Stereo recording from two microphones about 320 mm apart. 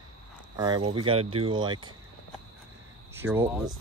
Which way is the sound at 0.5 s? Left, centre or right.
Centre.